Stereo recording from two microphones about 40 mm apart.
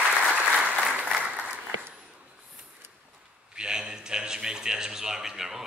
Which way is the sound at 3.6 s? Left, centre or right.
Centre.